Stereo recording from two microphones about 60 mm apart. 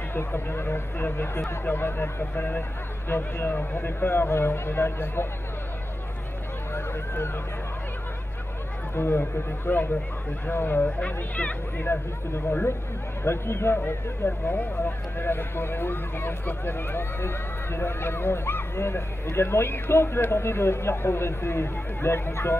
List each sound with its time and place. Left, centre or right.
0.1 s speech: left
6.7 s a sound: left
8.9 s speech: left
11.0 s speech: left
13.2 s speech: left